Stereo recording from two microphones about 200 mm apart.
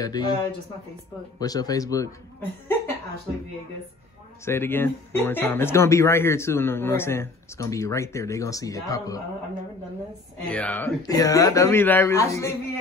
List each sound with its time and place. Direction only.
0.0 s speech: 20° left (ahead or behind)
1.4 s speech: 20° left (ahead or behind)
4.5 s speech: 10° left (ahead or behind)
10.5 s speech: 5° left (ahead or behind)
11.0 s speech: 20° left (ahead or behind)